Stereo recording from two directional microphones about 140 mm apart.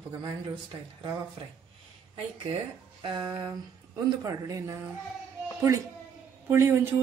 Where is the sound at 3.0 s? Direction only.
30° right (ahead or behind).